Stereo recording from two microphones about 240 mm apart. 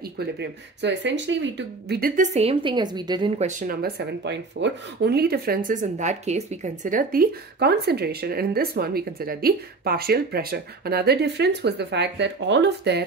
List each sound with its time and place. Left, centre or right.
0.2 s speech: right